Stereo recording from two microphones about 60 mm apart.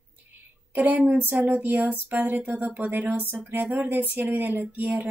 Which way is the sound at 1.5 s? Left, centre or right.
Right.